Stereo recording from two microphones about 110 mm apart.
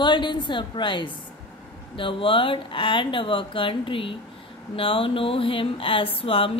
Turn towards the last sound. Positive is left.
turn(degrees=55)  # may be behind; listen again after turning